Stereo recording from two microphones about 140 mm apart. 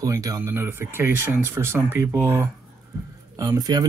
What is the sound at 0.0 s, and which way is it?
Speech, 25° right (ahead or behind).